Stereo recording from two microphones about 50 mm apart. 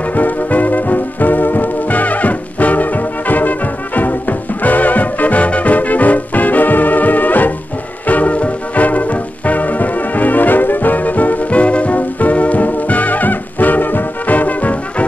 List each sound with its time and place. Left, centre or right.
0.1 s music: left